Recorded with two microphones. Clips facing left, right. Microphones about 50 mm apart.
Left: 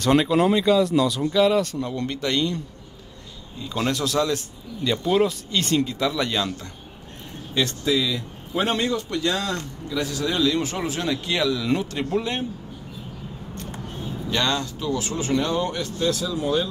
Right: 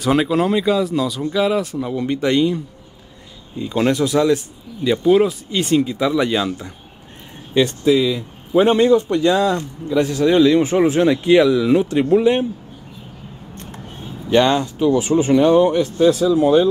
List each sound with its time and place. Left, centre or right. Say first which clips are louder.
0.0 s speech: right 2 dB; centre
3.5 s speech: right 8 dB; centre
9.8 s speech: right 10 dB; right
14.3 s speech: right 10 dB; right